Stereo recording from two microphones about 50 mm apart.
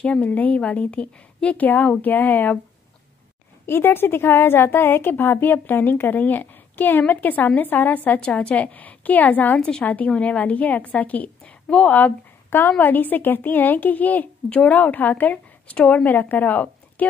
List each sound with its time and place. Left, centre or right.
0.0 s a woman's voice: left
3.6 s a woman's voice: left
9.6 s speech: centre
9.8 s a woman's voice: left
12.4 s a woman's voice: left